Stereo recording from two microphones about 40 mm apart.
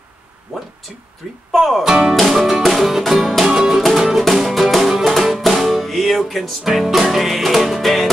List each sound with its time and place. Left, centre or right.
1.5 s speech: centre
1.9 s speech: centre
2.1 s speech: centre
2.6 s music: centre